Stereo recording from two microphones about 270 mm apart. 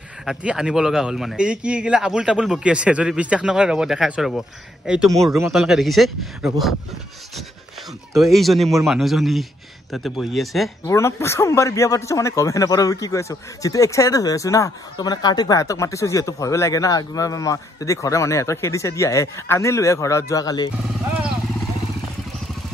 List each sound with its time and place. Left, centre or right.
0.2 s a man's voice: centre
5.5 s speech: centre
8.1 s speech: centre
10.9 s speech: centre